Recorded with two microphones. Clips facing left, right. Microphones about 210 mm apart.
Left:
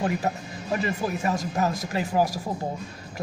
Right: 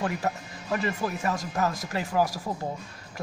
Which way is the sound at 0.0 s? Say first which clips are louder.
Left 3 dB; 20° left (ahead or behind).